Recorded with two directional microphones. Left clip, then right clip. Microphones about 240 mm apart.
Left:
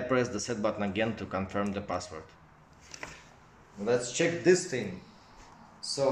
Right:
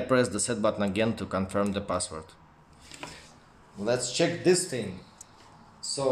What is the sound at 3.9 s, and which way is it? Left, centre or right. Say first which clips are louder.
Speech: right 1 dB; right.